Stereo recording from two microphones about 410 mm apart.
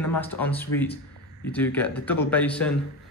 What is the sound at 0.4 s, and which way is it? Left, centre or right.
Speech, centre.